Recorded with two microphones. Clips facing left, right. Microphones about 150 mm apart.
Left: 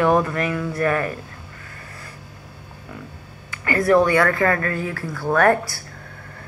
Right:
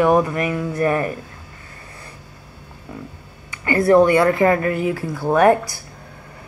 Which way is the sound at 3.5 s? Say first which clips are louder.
Right 3 dB; 20° right (ahead or behind).